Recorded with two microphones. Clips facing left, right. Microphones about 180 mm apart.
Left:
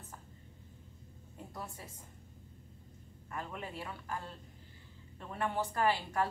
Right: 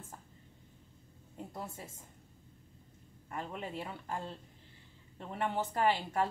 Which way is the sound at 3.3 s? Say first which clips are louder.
Right 2 dB; 25° right (ahead or behind).